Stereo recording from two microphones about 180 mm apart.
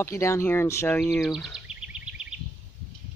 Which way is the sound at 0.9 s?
Centre (ahead or behind).